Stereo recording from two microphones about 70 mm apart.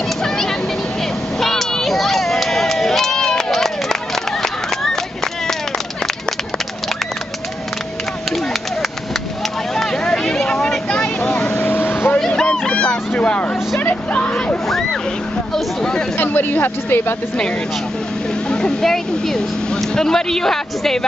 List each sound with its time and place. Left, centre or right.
0.2 s vehicle: centre
1.4 s a sound: centre
9.8 s vehicle: centre
10.9 s vehicle: centre
12.2 s vehicle: centre
14.7 s vehicle: centre
15.5 s a sound: centre
16.2 s a sound: left
18.5 s speech: centre